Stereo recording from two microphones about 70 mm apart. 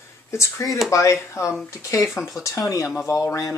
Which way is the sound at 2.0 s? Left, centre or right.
Centre.